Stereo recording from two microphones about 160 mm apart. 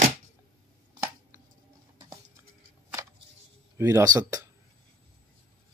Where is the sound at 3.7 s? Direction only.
20° right (ahead or behind).